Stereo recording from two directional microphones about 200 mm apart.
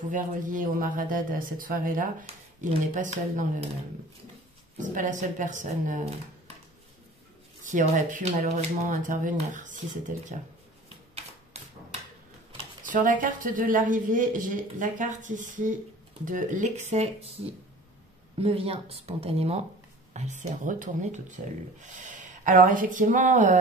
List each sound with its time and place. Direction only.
0.1 s speech: 40° right (ahead or behind)
4.7 s speech: 40° right (ahead or behind)
7.6 s speech: 40° right (ahead or behind)
12.8 s speech: 40° right (ahead or behind)
18.4 s speech: 30° right (ahead or behind)